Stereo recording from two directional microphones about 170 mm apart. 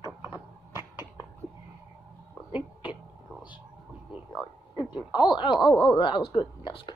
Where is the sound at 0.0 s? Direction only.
20° left (ahead or behind).